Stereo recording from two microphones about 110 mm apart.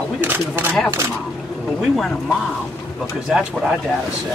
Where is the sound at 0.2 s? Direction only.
15° right (ahead or behind).